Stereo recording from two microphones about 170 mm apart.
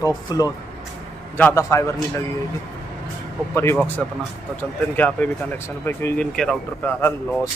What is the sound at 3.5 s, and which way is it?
Speech, 15° left (ahead or behind).